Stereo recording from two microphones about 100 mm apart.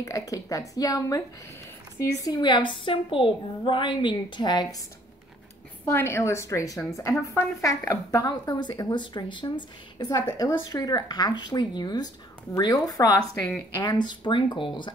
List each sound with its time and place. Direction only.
0.0 s speech: 35° left (ahead or behind)
2.3 s a woman's voice: 50° left (ahead or behind)
5.9 s speech: 25° left (ahead or behind); by 9.5 s 50° left (ahead or behind)
9.9 s a woman's voice: 40° left (ahead or behind)